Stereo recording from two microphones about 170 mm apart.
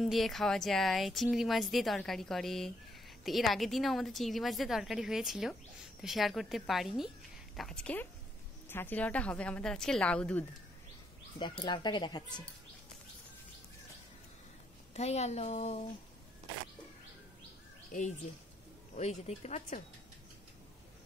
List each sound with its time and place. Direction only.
0.0 s a woman's voice: centre (ahead or behind)
11.3 s speech: 25° left (ahead or behind)
15.0 s speech: 40° left (ahead or behind)
18.9 s speech: 40° left (ahead or behind)